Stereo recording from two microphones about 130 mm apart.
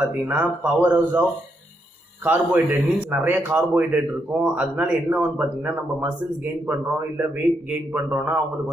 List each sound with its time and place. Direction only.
0.0 s a man's voice: 10° right (ahead or behind)
2.2 s a man's voice: 15° right (ahead or behind)